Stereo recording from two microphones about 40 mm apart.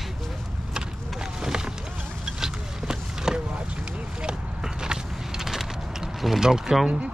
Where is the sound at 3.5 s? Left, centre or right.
Right.